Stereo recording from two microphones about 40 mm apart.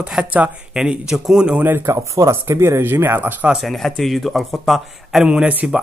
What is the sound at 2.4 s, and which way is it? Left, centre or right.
Speech, right.